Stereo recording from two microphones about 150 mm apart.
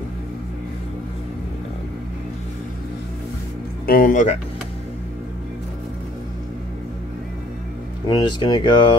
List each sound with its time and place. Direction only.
3.8 s speech: 70° left (ahead or behind)
8.1 s speech: 30° left (ahead or behind)